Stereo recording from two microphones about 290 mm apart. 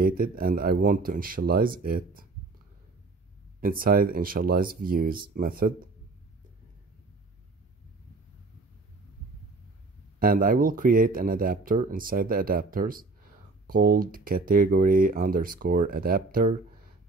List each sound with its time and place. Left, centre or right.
0.0 s speech: right
3.6 s speech: right
10.1 s speech: right